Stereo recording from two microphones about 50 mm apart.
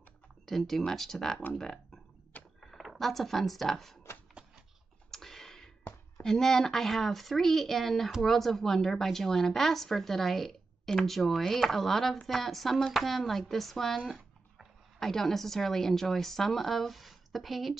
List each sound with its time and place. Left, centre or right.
0.5 s a woman's voice: centre
2.6 s speech: centre
5.1 s computer keyboard: centre
6.2 s a woman's voice: centre